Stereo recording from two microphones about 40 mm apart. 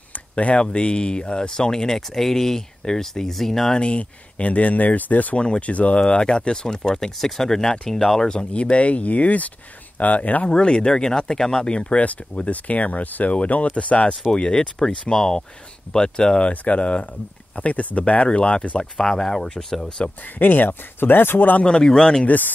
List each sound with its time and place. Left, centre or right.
0.1 s a sound: left
0.6 s speech: left
2.0 s speech: centre
3.7 s speech: left
5.4 s speech: left
5.7 s speech: left
10.4 s speech: left
12.4 s speech: left
19.0 s speech: centre
20.0 s speech: left
20.3 s speech: left
21.6 s speech: centre
22.2 s speech: left